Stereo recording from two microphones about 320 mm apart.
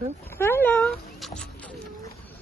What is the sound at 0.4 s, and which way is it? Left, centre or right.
Dog, centre.